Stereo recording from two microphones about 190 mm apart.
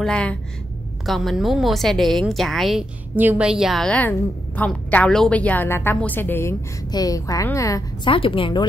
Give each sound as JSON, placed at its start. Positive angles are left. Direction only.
{"t": 0.0, "sound": "a woman's voice", "side_deg": 5}
{"t": 8.1, "sound": "a woman's voice", "side_deg": 30}